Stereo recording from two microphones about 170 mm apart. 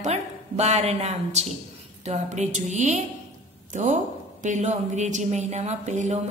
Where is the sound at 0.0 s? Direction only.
40° right (ahead or behind).